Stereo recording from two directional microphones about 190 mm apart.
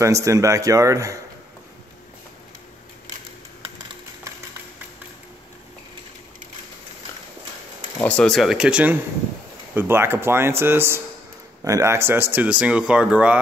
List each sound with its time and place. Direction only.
0.0 s speech: 15° right (ahead or behind)
8.0 s speech: 5° left (ahead or behind)